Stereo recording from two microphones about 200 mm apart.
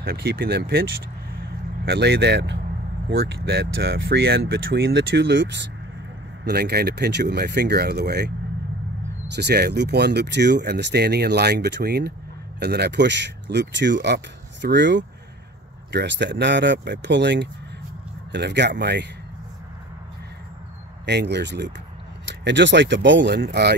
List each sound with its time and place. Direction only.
0.0 s speech: 50° right (ahead or behind)
9.3 s speech: 55° right (ahead or behind)
21.0 s speech: 60° right (ahead or behind)